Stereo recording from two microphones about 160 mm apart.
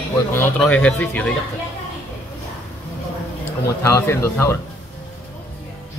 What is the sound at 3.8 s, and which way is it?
Speech, 15° left (ahead or behind).